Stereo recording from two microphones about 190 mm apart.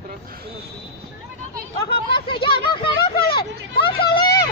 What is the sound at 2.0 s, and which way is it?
Speech, 25° left (ahead or behind).